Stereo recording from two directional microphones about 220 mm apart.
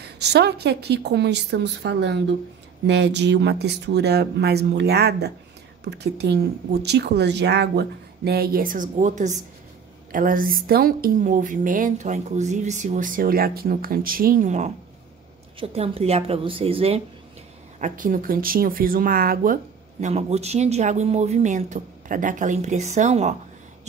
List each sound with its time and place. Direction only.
0.0 s speech: 50° right (ahead or behind); by 23.3 s 30° right (ahead or behind)